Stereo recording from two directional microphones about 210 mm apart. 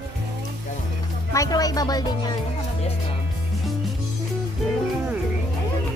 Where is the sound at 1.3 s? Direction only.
15° left (ahead or behind).